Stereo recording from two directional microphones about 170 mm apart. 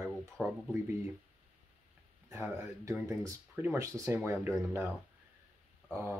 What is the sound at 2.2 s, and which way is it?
Speech, 20° right (ahead or behind).